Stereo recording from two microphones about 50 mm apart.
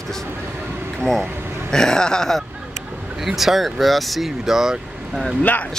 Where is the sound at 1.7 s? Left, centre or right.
Centre.